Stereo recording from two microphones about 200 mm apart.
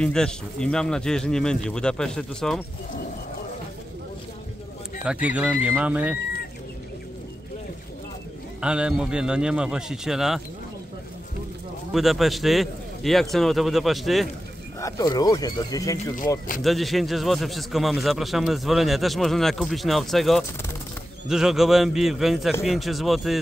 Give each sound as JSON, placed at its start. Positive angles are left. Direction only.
{"t": 0.0, "sound": "a man's voice", "side_deg": 5}
{"t": 5.0, "sound": "speech", "side_deg": -5}
{"t": 8.5, "sound": "a man's voice", "side_deg": -5}
{"t": 11.9, "sound": "a man's voice", "side_deg": 0}
{"t": 14.8, "sound": "speech", "side_deg": 15}
{"t": 16.6, "sound": "a man's voice", "side_deg": 0}